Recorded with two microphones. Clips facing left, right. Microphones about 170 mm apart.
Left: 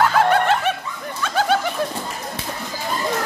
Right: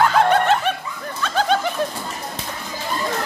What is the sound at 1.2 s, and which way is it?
Bird, 10° left (ahead or behind).